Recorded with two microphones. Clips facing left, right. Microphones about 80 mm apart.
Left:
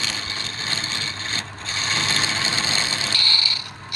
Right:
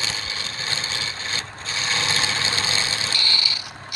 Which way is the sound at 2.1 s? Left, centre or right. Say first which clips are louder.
Even; left.